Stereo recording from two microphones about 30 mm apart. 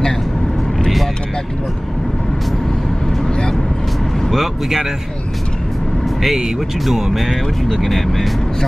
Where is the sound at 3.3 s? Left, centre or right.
Left.